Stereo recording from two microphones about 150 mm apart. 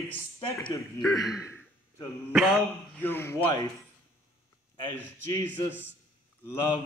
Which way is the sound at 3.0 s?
15° left (ahead or behind).